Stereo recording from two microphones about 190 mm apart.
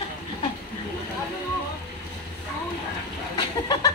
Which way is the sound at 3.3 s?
20° left (ahead or behind).